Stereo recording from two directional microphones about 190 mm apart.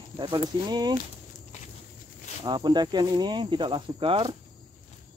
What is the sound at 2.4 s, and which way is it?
Speech, 20° right (ahead or behind).